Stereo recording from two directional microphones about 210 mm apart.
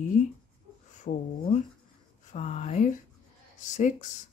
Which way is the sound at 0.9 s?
35° left (ahead or behind).